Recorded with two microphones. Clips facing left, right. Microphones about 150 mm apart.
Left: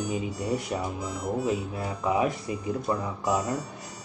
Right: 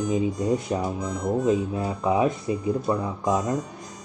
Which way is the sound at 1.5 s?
20° right (ahead or behind).